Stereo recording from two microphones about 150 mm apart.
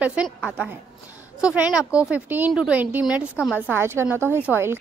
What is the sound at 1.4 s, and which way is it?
A woman's voice, 5° right (ahead or behind).